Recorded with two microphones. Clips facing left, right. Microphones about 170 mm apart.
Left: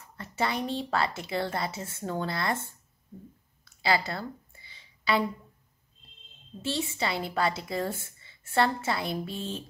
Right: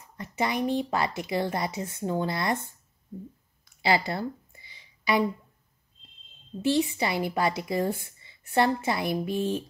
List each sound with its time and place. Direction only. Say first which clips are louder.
0.2 s a woman's voice: right 3 dB; 15° right (ahead or behind)
3.8 s a sound: right 3 dB; 20° right (ahead or behind)
6.6 s a woman's voice: right 6 dB; 20° right (ahead or behind)
9.3 s music: right 8 dB; 55° right (ahead or behind)